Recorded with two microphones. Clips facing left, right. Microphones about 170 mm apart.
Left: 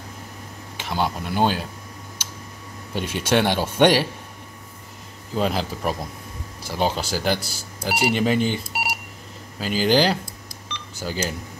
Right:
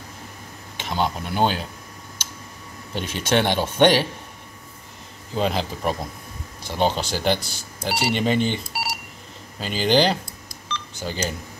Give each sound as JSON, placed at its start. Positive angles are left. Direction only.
{"t": 0.7, "sound": "speech", "side_deg": 5}
{"t": 2.9, "sound": "speech", "side_deg": 5}
{"t": 5.3, "sound": "speech", "side_deg": 5}
{"t": 9.6, "sound": "speech", "side_deg": 5}